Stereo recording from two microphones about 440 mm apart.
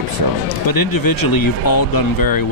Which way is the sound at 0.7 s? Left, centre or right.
Left.